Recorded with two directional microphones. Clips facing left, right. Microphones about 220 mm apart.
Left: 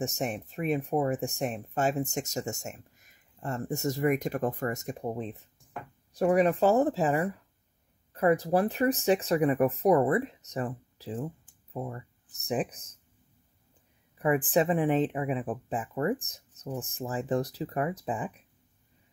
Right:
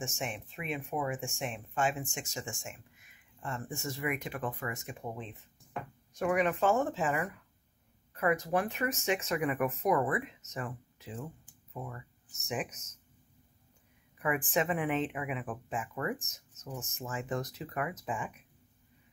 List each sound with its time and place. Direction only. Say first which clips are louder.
0.0 s speech: left 7 dB; 40° left (ahead or behind)
14.1 s speech: left 6 dB; 35° left (ahead or behind)